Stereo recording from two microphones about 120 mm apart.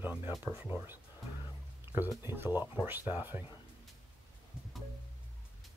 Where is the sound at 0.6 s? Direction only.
15° right (ahead or behind).